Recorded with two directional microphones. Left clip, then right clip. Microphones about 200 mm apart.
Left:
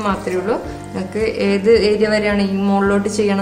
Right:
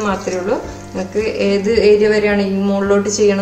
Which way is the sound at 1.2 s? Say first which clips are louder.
Right 2 dB; 40° left (ahead or behind).